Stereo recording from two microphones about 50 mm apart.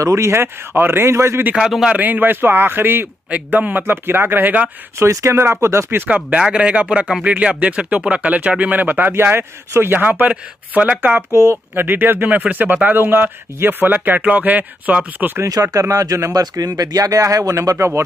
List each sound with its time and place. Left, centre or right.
0.0 s speech: right
0.4 s speech: right
1.9 s a man's voice: right
3.3 s speech: right
3.8 s a man's voice: right
4.9 s speech: right
6.0 s a man's voice: right
10.2 s speech: right
15.4 s speech: right